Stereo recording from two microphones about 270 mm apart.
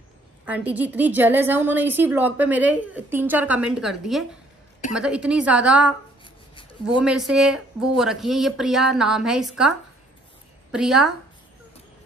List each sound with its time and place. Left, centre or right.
0.5 s a woman's voice: centre
6.2 s a sound: centre
7.0 s speech: centre